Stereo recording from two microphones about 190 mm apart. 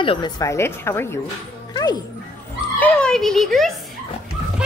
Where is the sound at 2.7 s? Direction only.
5° left (ahead or behind).